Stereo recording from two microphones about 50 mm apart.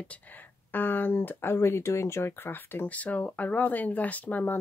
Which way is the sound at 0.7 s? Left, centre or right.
Left.